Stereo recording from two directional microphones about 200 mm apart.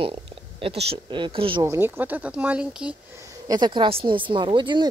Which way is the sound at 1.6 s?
10° right (ahead or behind).